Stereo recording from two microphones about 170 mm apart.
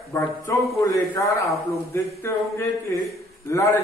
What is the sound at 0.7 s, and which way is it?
Speech, 20° left (ahead or behind).